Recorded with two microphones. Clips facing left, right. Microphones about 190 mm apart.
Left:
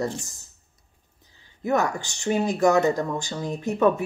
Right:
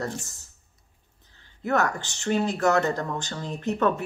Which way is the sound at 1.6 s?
15° left (ahead or behind).